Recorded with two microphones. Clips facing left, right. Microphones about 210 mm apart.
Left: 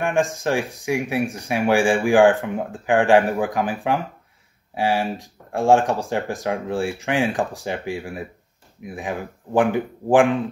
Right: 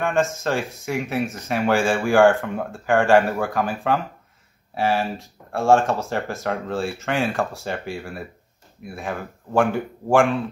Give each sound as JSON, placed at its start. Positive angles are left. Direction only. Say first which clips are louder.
{"t": 0.0, "sound": "speech", "louder": "left 1 dB", "side_deg": 15}